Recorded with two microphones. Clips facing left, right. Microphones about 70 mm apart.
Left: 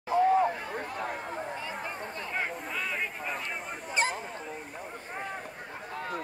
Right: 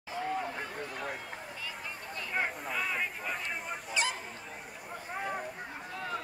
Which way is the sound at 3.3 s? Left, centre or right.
Left.